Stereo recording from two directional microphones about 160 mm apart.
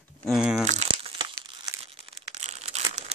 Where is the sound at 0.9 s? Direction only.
35° right (ahead or behind).